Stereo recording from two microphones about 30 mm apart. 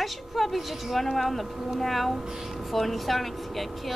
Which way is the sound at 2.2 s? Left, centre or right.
Centre.